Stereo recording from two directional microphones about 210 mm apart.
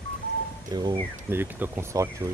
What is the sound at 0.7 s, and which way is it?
Speech, 20° right (ahead or behind).